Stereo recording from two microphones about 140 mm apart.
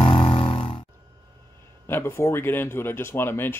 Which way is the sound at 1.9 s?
15° left (ahead or behind).